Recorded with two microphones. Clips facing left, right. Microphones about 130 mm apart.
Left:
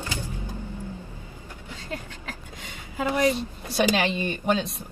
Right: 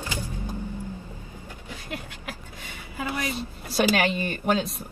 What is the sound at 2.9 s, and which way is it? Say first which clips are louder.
Speech: left 5 dB; 20° left (ahead or behind).